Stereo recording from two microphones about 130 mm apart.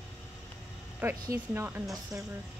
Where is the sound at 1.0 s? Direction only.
15° right (ahead or behind).